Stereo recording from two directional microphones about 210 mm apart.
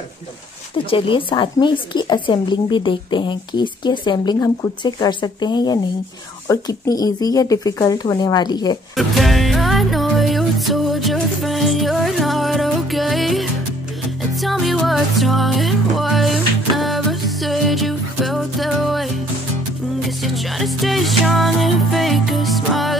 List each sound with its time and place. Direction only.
0.8 s speech: 25° left (ahead or behind)
8.9 s music: centre (ahead or behind)